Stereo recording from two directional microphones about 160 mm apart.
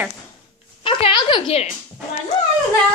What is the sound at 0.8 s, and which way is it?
Speech, 30° left (ahead or behind).